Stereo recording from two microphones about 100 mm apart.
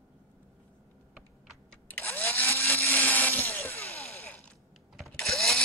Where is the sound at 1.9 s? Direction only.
15° left (ahead or behind).